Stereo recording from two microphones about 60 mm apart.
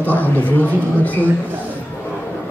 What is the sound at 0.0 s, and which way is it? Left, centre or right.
Speech, left.